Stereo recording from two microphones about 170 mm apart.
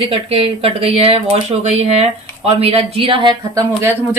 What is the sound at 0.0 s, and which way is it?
Speech, 35° right (ahead or behind).